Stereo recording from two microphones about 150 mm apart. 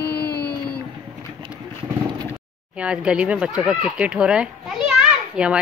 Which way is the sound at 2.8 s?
5° right (ahead or behind).